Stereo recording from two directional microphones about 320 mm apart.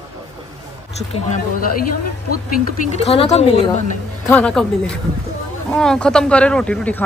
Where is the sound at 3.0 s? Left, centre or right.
Centre.